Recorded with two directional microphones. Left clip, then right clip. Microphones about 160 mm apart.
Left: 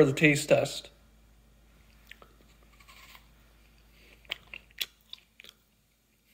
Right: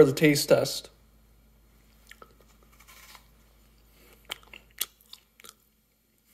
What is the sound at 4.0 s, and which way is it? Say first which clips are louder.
Chewing: left 1 dB; 55° right (ahead or behind).